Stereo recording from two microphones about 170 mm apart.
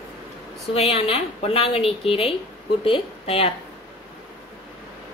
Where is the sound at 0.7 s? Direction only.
35° left (ahead or behind).